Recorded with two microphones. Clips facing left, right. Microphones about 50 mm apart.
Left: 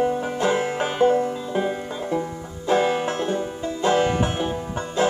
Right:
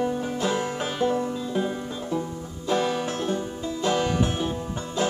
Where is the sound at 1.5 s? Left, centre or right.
Left.